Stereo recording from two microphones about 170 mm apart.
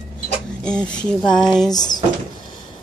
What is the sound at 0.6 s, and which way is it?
Speech, 5° left (ahead or behind).